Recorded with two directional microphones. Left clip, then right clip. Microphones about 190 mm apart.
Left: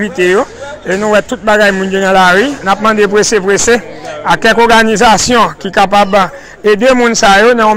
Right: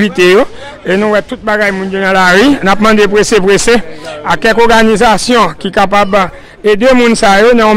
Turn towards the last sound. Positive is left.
turn(degrees=-25)  # may be behind; listen again after turning